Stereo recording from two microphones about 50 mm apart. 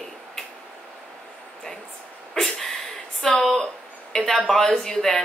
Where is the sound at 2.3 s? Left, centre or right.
Centre.